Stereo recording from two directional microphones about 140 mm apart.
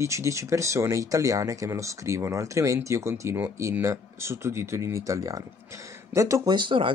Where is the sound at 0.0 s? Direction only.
20° right (ahead or behind).